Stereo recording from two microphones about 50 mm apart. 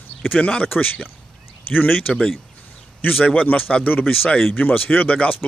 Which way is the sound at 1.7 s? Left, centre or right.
Left.